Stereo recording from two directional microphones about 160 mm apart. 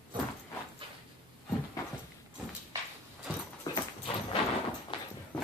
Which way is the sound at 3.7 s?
25° left (ahead or behind).